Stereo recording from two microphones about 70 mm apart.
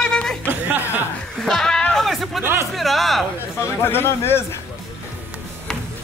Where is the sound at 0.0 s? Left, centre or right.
Centre.